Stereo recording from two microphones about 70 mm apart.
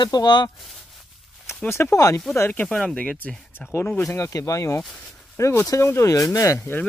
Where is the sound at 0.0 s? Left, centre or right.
Left.